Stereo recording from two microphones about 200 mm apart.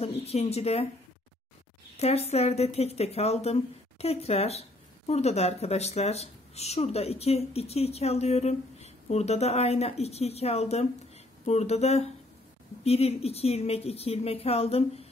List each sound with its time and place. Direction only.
0.0 s speech: 30° left (ahead or behind)
2.0 s speech: 30° left (ahead or behind)